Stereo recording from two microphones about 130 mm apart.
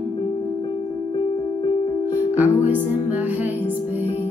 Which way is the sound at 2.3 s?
15° right (ahead or behind).